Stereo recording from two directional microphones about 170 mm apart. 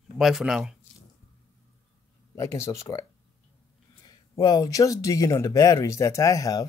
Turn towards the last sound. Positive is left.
turn(degrees=20)  # may be behind; listen again after turning